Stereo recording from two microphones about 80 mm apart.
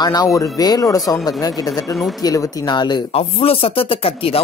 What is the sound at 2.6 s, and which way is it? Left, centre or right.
Speech, left.